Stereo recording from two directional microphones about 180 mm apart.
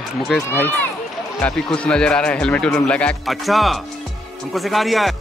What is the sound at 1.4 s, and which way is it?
Speech, 5° left (ahead or behind).